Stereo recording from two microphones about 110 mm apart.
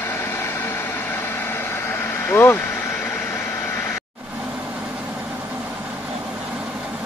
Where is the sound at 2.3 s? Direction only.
20° left (ahead or behind).